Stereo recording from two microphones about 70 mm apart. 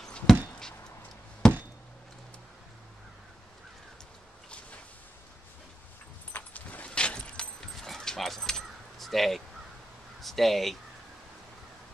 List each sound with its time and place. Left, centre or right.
0.0 s a sound: centre
1.4 s chop: centre
6.3 s keys jangling: left; by 9.4 s centre
10.2 s speech: centre